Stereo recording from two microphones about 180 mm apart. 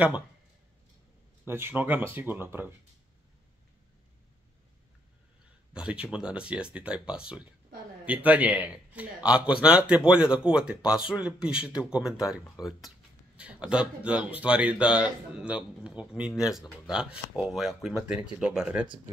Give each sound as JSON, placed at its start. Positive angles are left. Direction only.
{"t": 1.5, "sound": "speech", "side_deg": -10}
{"t": 5.7, "sound": "speech", "side_deg": -5}
{"t": 12.6, "sound": "speech", "side_deg": 20}
{"t": 13.4, "sound": "speech", "side_deg": -5}